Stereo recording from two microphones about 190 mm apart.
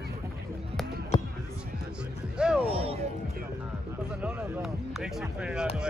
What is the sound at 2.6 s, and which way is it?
Music, 30° right (ahead or behind).